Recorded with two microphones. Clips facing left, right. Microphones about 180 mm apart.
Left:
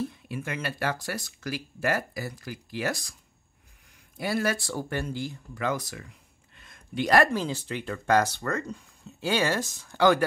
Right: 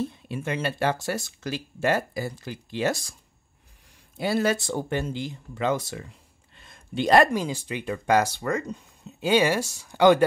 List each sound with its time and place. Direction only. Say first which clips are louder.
0.0 s speech: right 3 dB; 25° right (ahead or behind)
4.2 s speech: right 4 dB; 25° right (ahead or behind)
7.3 s speech: right 2 dB; 15° right (ahead or behind)